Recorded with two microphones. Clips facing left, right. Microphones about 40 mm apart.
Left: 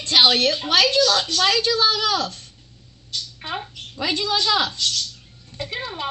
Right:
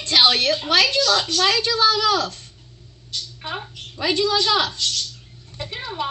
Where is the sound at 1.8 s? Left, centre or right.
Centre.